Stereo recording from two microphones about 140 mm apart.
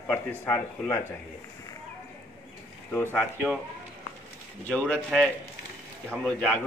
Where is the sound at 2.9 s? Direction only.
15° left (ahead or behind).